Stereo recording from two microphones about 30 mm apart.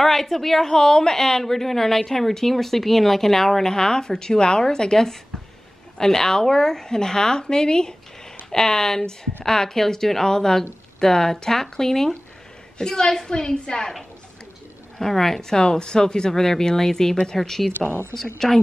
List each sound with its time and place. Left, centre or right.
0.0 s a woman's voice: centre
15.0 s a woman's voice: centre
15.5 s a woman's voice: left